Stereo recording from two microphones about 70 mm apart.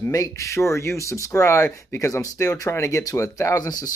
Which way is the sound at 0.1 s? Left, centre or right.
Left.